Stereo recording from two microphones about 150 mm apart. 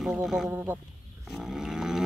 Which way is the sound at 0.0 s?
5° right (ahead or behind).